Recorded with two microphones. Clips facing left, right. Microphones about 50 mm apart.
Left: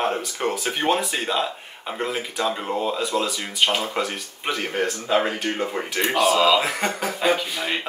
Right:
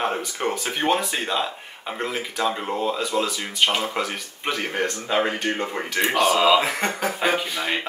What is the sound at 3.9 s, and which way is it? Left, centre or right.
Speech, centre.